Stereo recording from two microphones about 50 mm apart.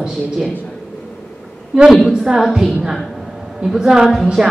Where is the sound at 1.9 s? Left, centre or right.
Centre.